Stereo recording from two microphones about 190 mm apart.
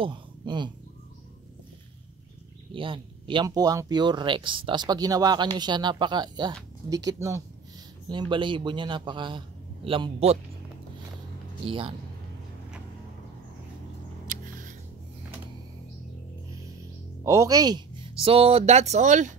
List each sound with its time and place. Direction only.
0.0 s speech: 25° right (ahead or behind)
2.7 s speech: 25° right (ahead or behind)
11.6 s speech: 30° right (ahead or behind)
14.2 s a sound: 45° right (ahead or behind)
17.2 s speech: 15° right (ahead or behind); by 19.3 s 40° right (ahead or behind)